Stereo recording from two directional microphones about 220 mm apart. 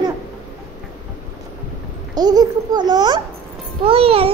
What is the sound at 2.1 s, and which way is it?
A child's voice, 15° right (ahead or behind).